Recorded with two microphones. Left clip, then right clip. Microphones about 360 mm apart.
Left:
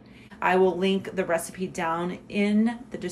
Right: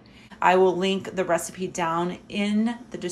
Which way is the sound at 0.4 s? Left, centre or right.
Centre.